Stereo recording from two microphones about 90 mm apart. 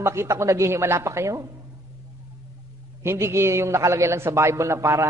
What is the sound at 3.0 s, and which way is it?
A man's voice, 30° right (ahead or behind).